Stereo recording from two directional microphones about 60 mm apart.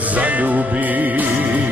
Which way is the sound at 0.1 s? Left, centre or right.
Right.